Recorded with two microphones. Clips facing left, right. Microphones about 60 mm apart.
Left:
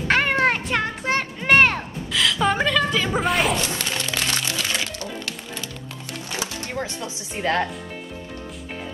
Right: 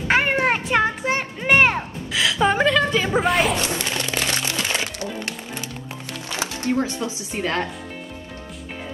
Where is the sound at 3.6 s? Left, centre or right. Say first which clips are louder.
Right 2 dB; right.